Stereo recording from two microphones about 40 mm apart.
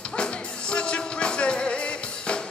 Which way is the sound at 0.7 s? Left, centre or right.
Left.